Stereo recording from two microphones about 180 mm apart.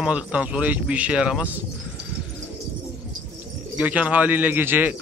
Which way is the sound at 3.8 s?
10° right (ahead or behind).